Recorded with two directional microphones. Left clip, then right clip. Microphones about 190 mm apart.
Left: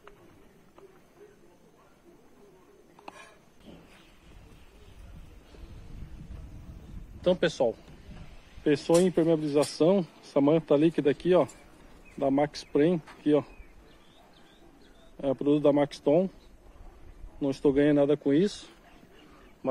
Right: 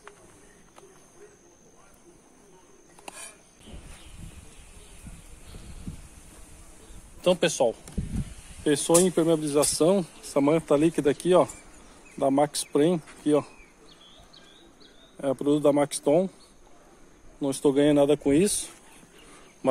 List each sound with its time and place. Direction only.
7.2 s speech: 15° right (ahead or behind)
13.2 s insect: 10° right (ahead or behind)
15.1 s speech: 10° right (ahead or behind)
17.4 s speech: 10° right (ahead or behind)